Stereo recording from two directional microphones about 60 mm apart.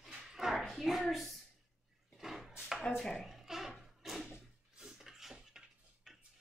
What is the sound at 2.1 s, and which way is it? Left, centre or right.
Drawer open or close, centre.